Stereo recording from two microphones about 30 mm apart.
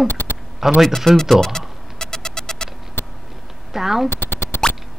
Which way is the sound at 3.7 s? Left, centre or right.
Centre.